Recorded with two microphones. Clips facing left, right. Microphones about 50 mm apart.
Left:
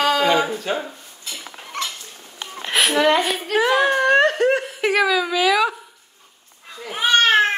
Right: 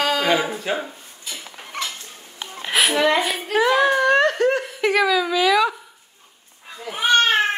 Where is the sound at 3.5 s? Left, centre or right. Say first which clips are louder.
Even; centre.